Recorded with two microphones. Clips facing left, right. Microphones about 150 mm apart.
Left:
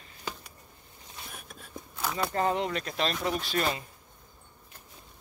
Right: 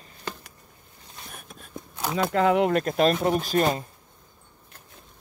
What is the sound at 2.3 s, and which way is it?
Speech, 80° right.